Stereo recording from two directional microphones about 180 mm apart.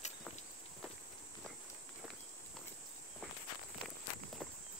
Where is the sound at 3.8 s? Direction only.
Centre (ahead or behind).